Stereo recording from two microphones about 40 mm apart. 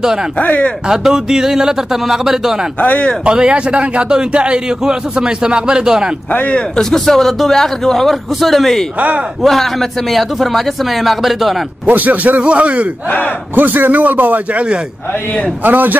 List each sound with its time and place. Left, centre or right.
0.4 s speech: left
0.8 s speech: centre
2.8 s speech: left
3.3 s speech: right
6.3 s speech: left
6.8 s a man's voice: centre
11.8 s a man's voice: right
12.4 s speech: right
13.6 s a man's voice: right
15.6 s a man's voice: right